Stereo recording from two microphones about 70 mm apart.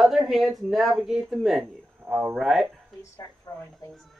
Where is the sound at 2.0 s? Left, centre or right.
Right.